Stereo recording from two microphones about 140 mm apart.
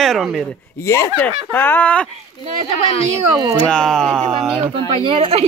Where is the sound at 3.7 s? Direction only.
5° left (ahead or behind).